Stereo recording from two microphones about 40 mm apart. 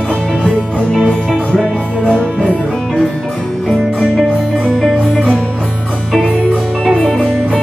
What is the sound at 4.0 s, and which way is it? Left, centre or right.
Music, right.